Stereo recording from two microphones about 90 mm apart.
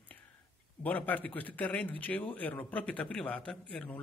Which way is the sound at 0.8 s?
20° left (ahead or behind).